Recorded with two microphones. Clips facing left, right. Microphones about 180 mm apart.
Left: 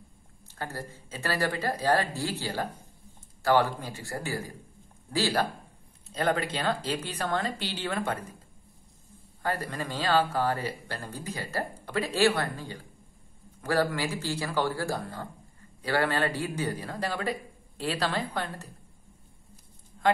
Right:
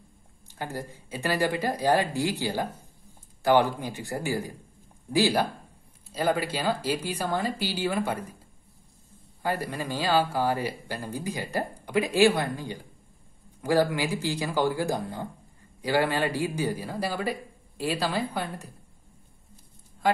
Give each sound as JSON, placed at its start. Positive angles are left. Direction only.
{"t": 0.6, "sound": "speech", "side_deg": -15}
{"t": 9.4, "sound": "speech", "side_deg": -10}